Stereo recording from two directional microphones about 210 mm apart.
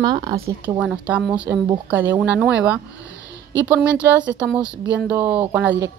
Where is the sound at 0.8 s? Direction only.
5° right (ahead or behind).